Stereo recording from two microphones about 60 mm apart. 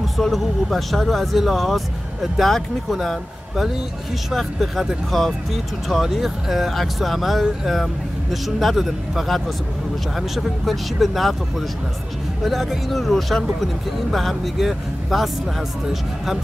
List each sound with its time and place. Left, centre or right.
0.0 s speech: centre
12.4 s speech: centre